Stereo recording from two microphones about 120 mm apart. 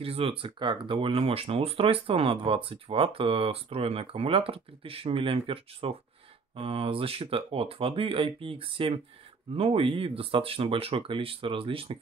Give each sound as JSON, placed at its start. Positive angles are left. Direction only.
{"t": 0.0, "sound": "speech", "side_deg": -50}